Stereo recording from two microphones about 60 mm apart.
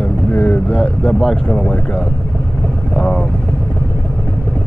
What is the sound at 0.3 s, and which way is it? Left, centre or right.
Vehicle, left.